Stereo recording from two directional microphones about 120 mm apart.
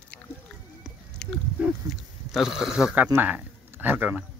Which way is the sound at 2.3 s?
5° right (ahead or behind).